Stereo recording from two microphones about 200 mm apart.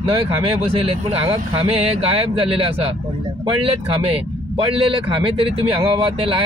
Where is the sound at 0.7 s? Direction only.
30° right (ahead or behind).